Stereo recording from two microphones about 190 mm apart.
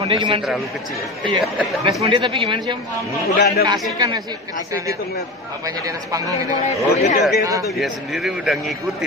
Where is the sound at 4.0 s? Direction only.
20° right (ahead or behind).